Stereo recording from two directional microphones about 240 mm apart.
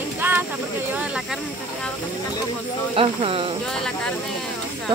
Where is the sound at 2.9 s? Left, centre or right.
Right.